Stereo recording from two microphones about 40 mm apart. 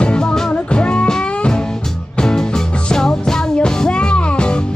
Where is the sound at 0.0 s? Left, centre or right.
Left.